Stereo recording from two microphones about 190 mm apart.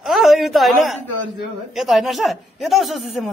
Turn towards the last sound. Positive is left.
turn(degrees=0)  # may be behind; listen again after turning